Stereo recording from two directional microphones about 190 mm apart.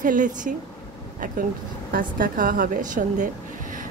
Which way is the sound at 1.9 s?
45° right (ahead or behind).